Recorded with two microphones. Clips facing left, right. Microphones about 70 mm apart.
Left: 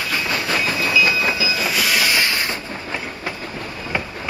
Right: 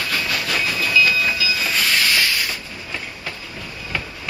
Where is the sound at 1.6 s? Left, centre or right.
Centre; by 2.5 s left.